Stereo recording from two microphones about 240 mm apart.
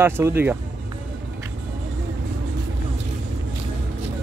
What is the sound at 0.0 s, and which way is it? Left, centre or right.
Speech, centre.